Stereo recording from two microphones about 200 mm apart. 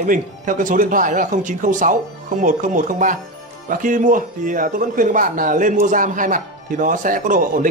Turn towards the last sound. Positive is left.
turn(degrees=-40)  # may be behind; listen again after turning